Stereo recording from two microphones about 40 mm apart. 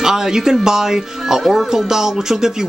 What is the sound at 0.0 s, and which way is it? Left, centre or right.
Speech, centre.